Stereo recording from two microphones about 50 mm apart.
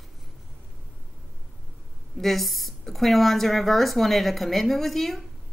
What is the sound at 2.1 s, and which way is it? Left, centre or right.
A woman's voice, centre.